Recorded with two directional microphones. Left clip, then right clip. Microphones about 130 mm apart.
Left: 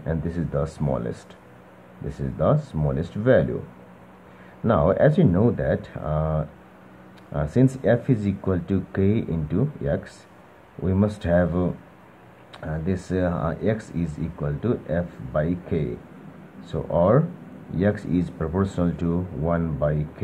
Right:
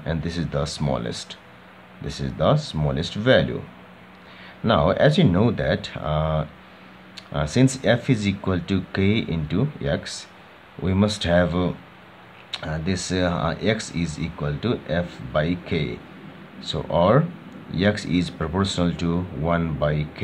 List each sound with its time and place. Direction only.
0.0 s speech: centre (ahead or behind)
4.6 s speech: centre (ahead or behind)
12.8 s speech: centre (ahead or behind)